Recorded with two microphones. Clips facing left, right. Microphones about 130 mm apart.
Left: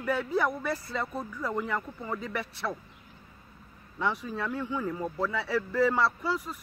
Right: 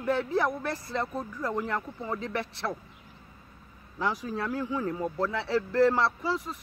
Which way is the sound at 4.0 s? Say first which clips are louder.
Right 1 dB; centre (ahead or behind).